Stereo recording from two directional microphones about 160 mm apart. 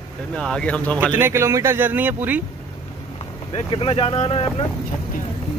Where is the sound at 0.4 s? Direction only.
5° left (ahead or behind).